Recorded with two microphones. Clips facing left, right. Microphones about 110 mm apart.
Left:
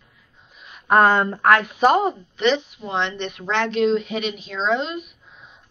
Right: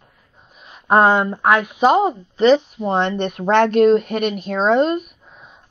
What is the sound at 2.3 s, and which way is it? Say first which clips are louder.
A woman's voice: right 9 dB; 40° right (ahead or behind).